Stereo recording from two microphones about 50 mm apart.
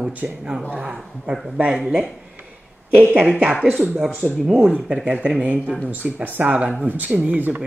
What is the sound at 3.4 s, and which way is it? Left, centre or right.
Speech, centre.